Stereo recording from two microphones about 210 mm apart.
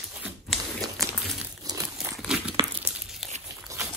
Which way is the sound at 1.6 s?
15° right (ahead or behind).